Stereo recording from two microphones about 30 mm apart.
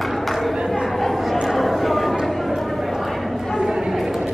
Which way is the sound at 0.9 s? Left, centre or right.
Centre.